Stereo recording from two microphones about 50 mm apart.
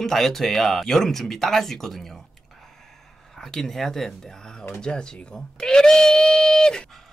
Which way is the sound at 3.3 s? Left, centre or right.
Centre.